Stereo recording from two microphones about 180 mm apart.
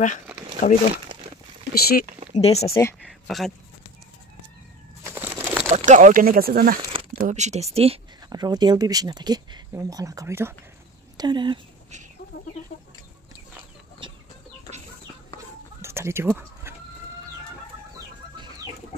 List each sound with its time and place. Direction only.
0.6 s speech: 45° left (ahead or behind)
1.7 s speech: 60° left (ahead or behind)
2.3 s speech: 35° left (ahead or behind)
2.7 s speech: 15° left (ahead or behind)
3.1 s speech: centre (ahead or behind)
5.0 s bird: 10° right (ahead or behind)
5.9 s speech: 45° right (ahead or behind)
7.2 s speech: 45° right (ahead or behind)
8.3 s speech: 25° right (ahead or behind)
11.1 s speech: 25° right (ahead or behind)
14.0 s chicken: 25° right (ahead or behind)
15.8 s chicken: 15° right (ahead or behind)